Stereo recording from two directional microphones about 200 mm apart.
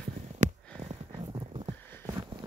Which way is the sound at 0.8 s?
25° right (ahead or behind).